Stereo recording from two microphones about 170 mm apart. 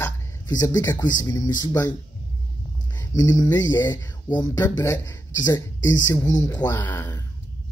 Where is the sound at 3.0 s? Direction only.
20° left (ahead or behind).